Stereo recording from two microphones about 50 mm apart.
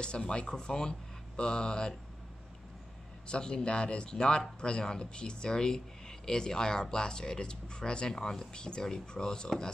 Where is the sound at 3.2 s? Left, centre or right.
Centre.